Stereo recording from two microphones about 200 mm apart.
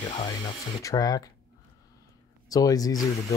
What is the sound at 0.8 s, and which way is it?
Speech, 15° left (ahead or behind).